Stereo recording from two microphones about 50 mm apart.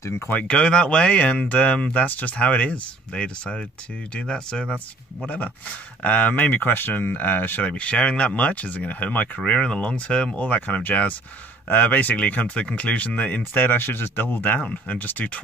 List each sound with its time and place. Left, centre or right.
0.3 s speech: left
0.6 s speech: centre
5.2 s speech: left
6.4 s speech: left
7.6 s speech: left